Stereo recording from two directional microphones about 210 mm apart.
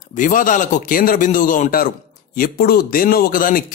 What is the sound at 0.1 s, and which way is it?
A man's voice, 40° left (ahead or behind).